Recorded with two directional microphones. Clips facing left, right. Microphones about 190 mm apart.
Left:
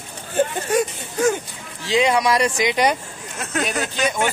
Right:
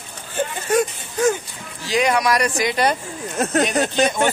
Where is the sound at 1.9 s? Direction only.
25° left (ahead or behind).